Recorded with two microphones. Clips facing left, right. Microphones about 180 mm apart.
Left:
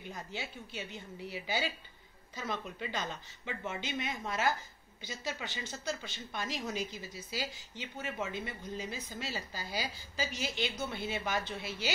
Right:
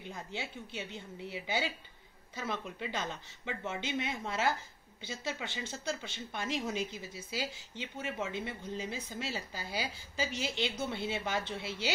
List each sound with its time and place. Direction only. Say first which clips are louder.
0.0 s a woman's voice: right 1 dB; 20° right (ahead or behind)